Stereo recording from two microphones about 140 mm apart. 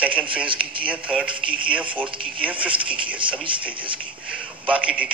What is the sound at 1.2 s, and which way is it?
Speech, 35° right (ahead or behind).